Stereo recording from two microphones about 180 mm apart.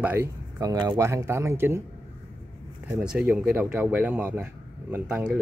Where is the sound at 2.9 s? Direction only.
5° right (ahead or behind).